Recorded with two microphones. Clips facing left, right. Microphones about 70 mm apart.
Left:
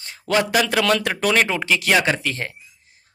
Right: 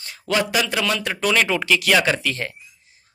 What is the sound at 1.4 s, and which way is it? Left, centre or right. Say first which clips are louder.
Speech: right 1 dB; left.